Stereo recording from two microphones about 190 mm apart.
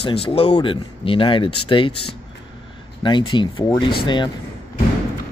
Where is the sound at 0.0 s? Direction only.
30° left (ahead or behind).